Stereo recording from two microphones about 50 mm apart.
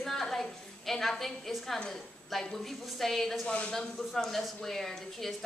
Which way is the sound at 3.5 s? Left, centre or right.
Left.